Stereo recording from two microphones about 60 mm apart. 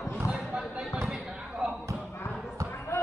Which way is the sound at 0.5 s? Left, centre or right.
Centre.